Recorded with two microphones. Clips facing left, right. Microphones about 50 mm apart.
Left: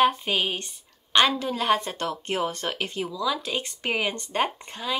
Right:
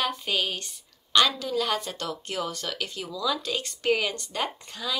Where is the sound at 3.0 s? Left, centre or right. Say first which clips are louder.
Right 1 dB; centre; by 5.0 s left.